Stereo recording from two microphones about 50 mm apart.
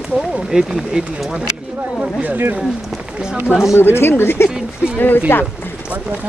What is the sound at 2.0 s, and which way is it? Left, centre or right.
Speech, right.